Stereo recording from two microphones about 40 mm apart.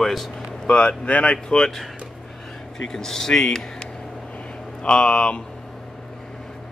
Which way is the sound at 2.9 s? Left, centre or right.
Centre.